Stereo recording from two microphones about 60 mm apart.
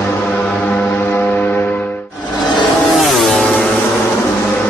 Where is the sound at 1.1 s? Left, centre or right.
Left.